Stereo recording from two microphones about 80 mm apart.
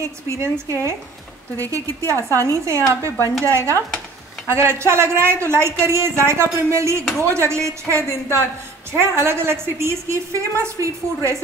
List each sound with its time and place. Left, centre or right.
0.0 s a woman's voice: right